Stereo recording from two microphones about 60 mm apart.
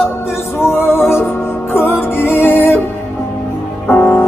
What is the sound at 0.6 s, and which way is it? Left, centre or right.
Music, left.